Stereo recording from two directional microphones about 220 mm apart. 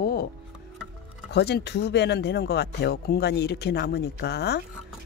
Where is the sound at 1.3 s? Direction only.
50° left (ahead or behind).